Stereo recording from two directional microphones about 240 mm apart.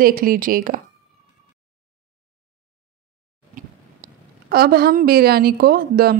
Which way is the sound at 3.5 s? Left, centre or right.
Right.